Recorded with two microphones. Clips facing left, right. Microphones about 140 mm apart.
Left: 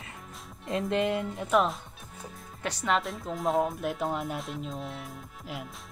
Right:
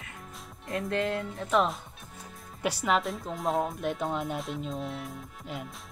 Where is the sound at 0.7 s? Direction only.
25° left (ahead or behind).